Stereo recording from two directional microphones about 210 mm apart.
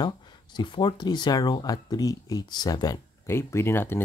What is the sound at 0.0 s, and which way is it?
Speech, 20° left (ahead or behind).